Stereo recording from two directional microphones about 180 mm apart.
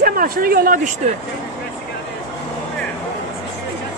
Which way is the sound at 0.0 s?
55° right (ahead or behind).